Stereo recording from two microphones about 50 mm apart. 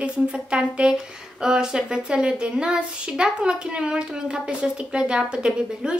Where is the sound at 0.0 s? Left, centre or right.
Right.